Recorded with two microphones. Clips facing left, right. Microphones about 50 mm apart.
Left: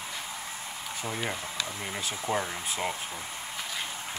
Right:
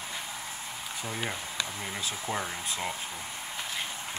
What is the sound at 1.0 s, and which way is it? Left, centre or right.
Speech, centre.